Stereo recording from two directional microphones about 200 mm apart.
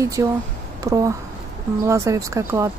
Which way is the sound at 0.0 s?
15° right (ahead or behind).